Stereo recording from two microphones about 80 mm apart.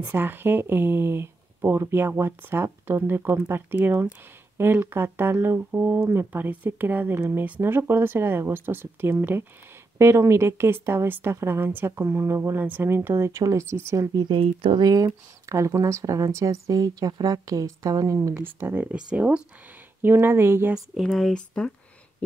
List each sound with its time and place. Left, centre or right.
0.1 s a woman's voice: right
14.1 s speech: right
18.6 s speech: right
20.0 s speech: right
21.0 s speech: centre